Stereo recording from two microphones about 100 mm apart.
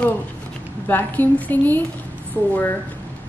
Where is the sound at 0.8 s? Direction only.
20° left (ahead or behind).